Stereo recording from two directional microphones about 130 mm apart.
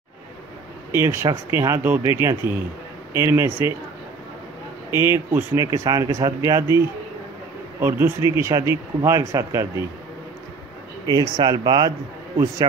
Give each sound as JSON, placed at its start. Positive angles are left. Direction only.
{"t": 0.9, "sound": "speech", "side_deg": -20}
{"t": 4.9, "sound": "speech", "side_deg": -20}
{"t": 8.3, "sound": "speech", "side_deg": -20}
{"t": 11.1, "sound": "speech", "side_deg": -30}